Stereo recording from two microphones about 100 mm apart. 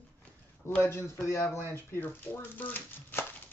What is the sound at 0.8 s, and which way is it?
Speech, 25° left (ahead or behind).